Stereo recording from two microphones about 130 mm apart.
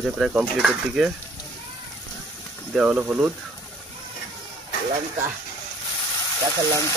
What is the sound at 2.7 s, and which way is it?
Speech, 10° right (ahead or behind).